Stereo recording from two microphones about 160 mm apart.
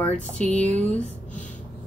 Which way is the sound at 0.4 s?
10° left (ahead or behind).